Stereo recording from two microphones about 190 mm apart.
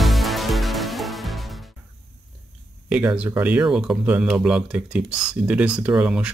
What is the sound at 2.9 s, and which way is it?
Speech, 10° right (ahead or behind).